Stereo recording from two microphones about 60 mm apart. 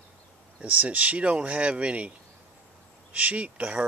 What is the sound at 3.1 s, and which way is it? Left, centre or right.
Speech, right.